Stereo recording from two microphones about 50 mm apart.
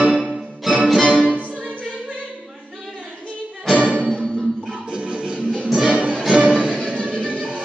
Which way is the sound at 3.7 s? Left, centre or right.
Right.